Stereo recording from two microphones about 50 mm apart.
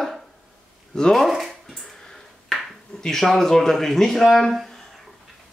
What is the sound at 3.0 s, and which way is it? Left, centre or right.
A man's voice, centre.